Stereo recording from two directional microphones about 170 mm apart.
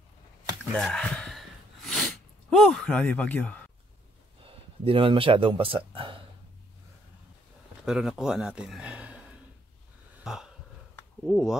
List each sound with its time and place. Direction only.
0.7 s gasp: 5° left (ahead or behind)
2.5 s speech: centre (ahead or behind)
4.8 s speech: 30° right (ahead or behind)
7.8 s speech: centre (ahead or behind)
10.2 s a sound: 5° right (ahead or behind)